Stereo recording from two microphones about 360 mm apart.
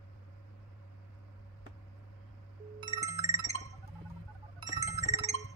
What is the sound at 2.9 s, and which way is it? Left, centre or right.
Music, centre.